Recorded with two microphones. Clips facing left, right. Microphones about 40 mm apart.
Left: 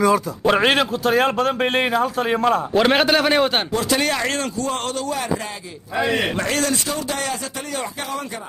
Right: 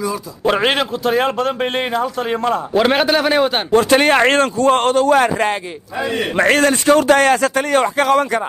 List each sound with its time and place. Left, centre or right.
0.5 s a man's voice: centre
3.7 s speech: right
6.3 s speech: right